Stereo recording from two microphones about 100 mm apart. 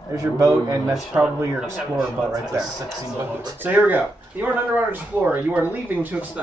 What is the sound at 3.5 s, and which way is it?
Speech, 20° right (ahead or behind).